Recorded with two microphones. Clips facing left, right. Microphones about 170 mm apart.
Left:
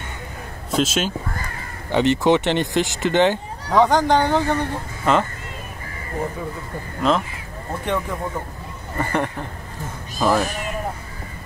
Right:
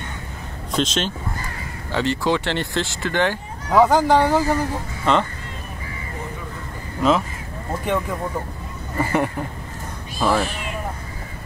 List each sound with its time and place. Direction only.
0.7 s speech: 5° left (ahead or behind)
1.9 s speech: 20° left (ahead or behind)
3.7 s speech: 5° right (ahead or behind)
7.0 s speech: 5° right (ahead or behind)
8.9 s speech: 5° right (ahead or behind)